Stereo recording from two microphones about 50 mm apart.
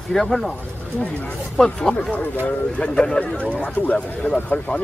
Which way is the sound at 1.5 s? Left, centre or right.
Centre.